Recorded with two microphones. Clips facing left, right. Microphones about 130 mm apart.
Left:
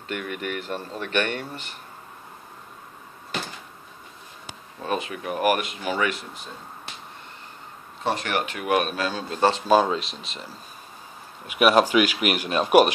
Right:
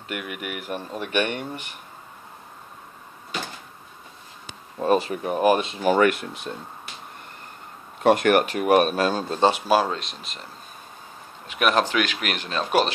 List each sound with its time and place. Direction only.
0.1 s speech: 10° right (ahead or behind)
4.8 s speech: 35° right (ahead or behind)
5.8 s speech: 45° right (ahead or behind); by 6.5 s 65° right (ahead or behind)
8.0 s speech: 55° right (ahead or behind)
9.4 s speech: 10° right (ahead or behind)
11.4 s speech: 10° left (ahead or behind)